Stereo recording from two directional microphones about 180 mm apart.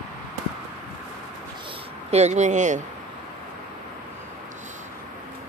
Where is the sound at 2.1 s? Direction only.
40° right (ahead or behind).